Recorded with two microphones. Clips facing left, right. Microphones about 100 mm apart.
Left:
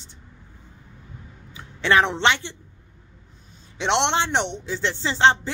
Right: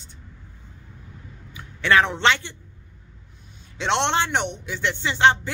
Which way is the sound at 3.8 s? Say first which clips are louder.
Left 1 dB; 25° left (ahead or behind).